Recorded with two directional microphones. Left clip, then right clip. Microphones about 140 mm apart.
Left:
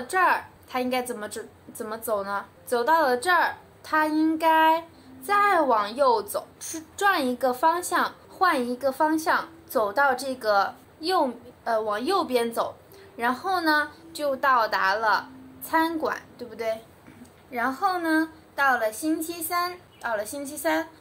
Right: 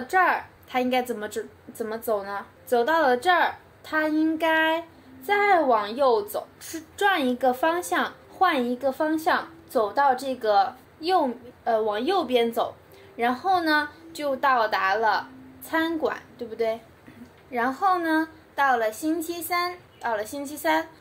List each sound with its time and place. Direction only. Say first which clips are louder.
0.0 s a woman's voice: right 1 dB; 15° right (ahead or behind)
4.2 s child singing: left 3 dB; 15° right (ahead or behind)
5.2 s a woman's voice: even; 10° right (ahead or behind)
17.5 s a woman's voice: right 2 dB; 10° right (ahead or behind)